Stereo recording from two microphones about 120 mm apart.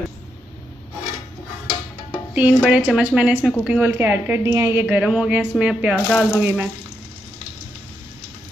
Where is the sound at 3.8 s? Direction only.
15° right (ahead or behind).